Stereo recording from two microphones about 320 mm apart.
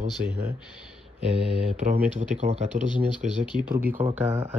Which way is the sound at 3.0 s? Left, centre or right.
Centre.